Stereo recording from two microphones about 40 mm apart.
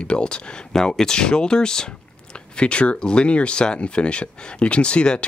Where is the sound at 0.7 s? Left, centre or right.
Centre.